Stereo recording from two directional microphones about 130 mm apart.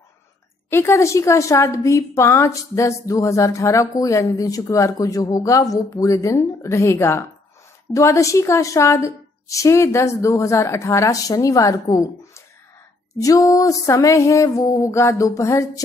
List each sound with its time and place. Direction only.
0.7 s a woman's voice: 20° left (ahead or behind)